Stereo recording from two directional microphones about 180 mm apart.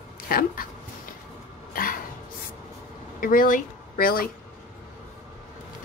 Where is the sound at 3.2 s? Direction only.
50° left (ahead or behind).